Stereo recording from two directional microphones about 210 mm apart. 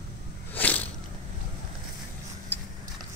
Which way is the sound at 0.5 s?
10° left (ahead or behind).